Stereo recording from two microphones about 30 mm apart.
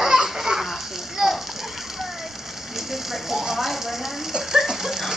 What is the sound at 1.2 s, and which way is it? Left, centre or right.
Splash, centre.